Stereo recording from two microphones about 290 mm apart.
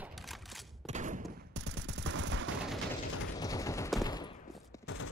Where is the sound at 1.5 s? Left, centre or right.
Right.